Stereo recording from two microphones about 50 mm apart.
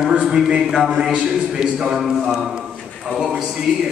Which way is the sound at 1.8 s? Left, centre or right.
Centre.